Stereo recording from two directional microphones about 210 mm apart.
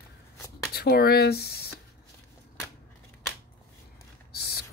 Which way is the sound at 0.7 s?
45° left (ahead or behind).